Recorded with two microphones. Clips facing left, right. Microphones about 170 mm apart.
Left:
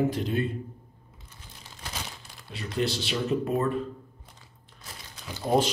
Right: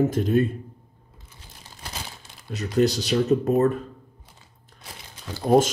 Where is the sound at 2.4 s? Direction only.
45° right (ahead or behind).